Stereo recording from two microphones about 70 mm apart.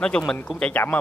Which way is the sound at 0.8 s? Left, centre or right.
Left.